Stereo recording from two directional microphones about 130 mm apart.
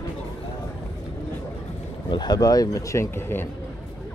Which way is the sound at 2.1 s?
30° left (ahead or behind).